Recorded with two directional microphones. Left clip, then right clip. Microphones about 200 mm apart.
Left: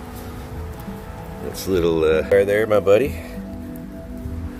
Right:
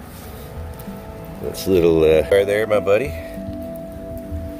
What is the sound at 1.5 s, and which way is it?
Speech, 30° right (ahead or behind).